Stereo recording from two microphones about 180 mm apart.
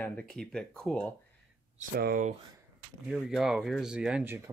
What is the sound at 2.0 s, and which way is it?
Speech, 55° right (ahead or behind).